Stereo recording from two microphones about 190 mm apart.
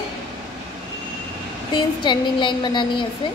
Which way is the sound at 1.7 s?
25° left (ahead or behind).